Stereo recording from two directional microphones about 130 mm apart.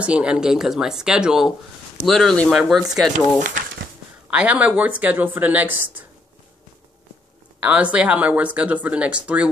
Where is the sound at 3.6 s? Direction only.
90° right.